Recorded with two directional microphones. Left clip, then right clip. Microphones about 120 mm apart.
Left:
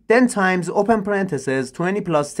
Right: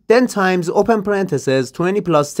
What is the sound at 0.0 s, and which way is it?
Speech, 30° right (ahead or behind).